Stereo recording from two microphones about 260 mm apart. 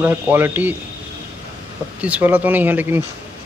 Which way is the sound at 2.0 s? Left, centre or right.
Centre.